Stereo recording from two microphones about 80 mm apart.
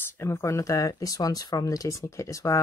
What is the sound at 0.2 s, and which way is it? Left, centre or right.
Speech, left.